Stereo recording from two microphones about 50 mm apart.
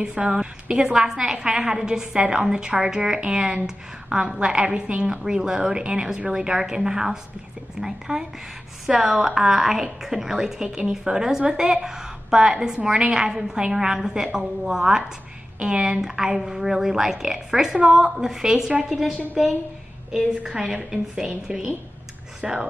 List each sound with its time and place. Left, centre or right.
0.0 s a woman's voice: centre